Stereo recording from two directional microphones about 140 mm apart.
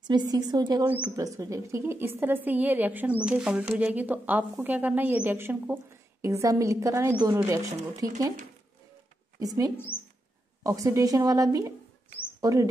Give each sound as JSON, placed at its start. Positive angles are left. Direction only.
{"t": 0.0, "sound": "a woman's voice", "side_deg": -30}
{"t": 9.4, "sound": "a woman's voice", "side_deg": -25}
{"t": 9.9, "sound": "bird", "side_deg": 90}
{"t": 10.6, "sound": "a woman's voice", "side_deg": -25}